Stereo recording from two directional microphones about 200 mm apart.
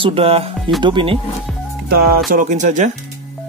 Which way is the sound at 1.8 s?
50° right (ahead or behind).